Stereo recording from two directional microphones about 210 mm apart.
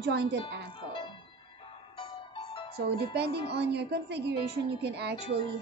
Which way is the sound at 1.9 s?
25° left (ahead or behind).